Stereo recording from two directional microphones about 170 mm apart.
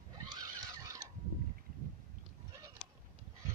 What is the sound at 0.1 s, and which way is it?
Horse, 20° right (ahead or behind).